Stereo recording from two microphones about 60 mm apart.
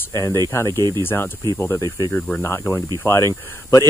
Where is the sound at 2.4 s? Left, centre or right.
Left.